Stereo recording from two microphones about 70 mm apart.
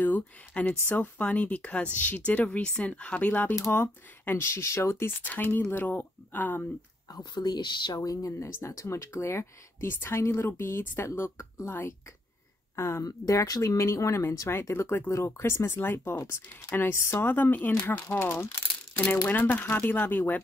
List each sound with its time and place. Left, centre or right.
0.0 s speech: left
3.5 s speech: left
5.2 s speech: left
7.1 s speech: left
8.3 s speech: left
12.7 s speech: left
13.0 s speech: left
19.2 s speech: left